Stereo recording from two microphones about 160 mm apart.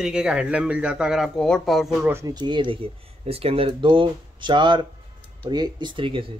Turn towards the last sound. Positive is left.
turn(degrees=-30)  # may be behind; listen again after turning